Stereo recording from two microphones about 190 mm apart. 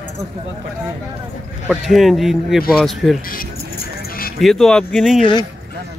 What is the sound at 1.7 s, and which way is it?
A man's voice, centre (ahead or behind).